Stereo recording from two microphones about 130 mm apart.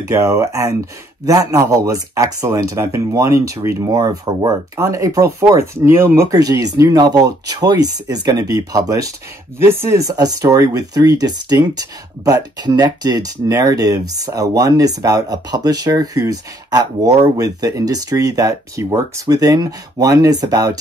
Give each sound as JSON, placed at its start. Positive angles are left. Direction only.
{"t": 0.0, "sound": "speech", "side_deg": -25}